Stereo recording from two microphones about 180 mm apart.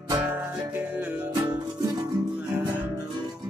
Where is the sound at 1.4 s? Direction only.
20° right (ahead or behind).